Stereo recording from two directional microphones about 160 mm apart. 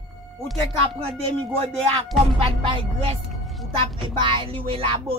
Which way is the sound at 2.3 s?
35° right (ahead or behind).